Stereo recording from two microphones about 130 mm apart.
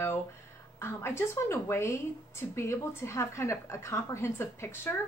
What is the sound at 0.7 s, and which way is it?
A woman's voice, 20° left (ahead or behind).